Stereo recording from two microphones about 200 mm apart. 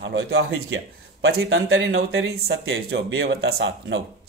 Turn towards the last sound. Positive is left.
turn(degrees=-60)  # may be behind; listen again after turning